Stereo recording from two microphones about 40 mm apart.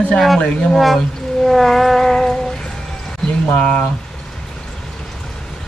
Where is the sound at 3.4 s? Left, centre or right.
Left.